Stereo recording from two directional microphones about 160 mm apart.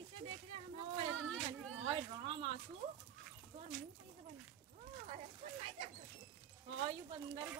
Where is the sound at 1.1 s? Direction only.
5° left (ahead or behind).